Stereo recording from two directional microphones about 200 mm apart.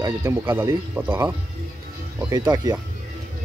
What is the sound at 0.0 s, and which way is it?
Speech, 15° right (ahead or behind).